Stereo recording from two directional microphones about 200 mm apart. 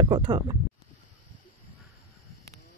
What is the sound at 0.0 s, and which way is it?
Speech, 20° right (ahead or behind).